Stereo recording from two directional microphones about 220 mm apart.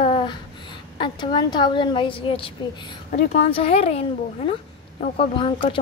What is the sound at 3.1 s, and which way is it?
Speech, 40° left (ahead or behind).